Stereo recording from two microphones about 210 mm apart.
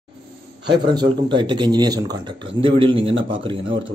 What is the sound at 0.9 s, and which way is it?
Speech, 20° right (ahead or behind).